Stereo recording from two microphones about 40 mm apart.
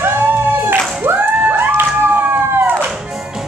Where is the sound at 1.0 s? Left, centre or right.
Right.